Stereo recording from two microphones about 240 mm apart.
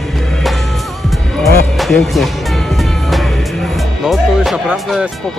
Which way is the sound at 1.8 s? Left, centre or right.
Centre.